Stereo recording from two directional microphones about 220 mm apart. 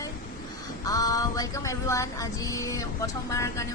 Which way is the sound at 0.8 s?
15° left (ahead or behind).